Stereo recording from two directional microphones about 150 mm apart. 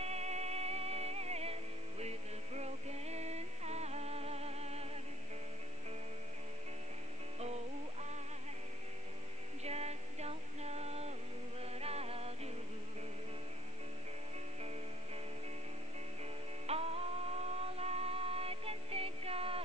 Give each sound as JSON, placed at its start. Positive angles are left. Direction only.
{"t": 0.0, "sound": "music", "side_deg": -45}
{"t": 7.3, "sound": "music", "side_deg": -45}
{"t": 9.6, "sound": "a sound", "side_deg": -45}
{"t": 11.6, "sound": "music", "side_deg": -45}
{"t": 16.6, "sound": "music", "side_deg": -40}